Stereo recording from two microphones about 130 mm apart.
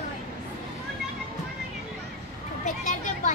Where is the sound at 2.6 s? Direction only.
70° left (ahead or behind).